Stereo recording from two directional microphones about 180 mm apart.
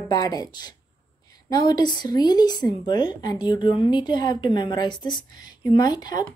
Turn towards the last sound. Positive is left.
turn(degrees=20)  # may be behind; listen again after turning